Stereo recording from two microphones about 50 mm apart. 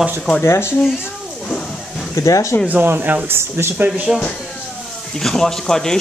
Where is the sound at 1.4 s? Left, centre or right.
Centre.